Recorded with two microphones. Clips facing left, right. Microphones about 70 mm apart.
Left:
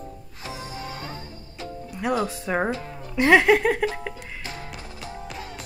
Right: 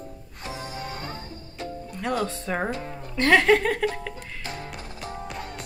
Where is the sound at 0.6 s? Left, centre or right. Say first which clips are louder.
Right 1 dB; right.